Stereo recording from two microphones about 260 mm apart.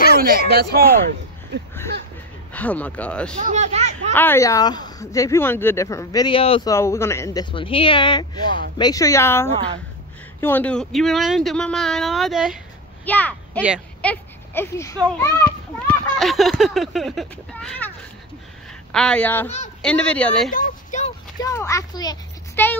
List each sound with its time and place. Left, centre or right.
0.2 s speech: right
2.5 s speech: centre
3.3 s speech: right
4.1 s a woman's voice: centre
15.9 s speech: centre
20.5 s speech: left
21.4 s a child's voice: centre